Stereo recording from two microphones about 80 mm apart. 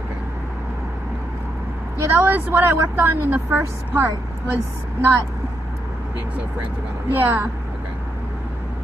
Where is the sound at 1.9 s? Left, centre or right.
Right.